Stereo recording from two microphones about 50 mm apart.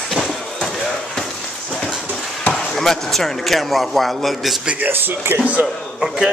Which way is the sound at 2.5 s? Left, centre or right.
Centre.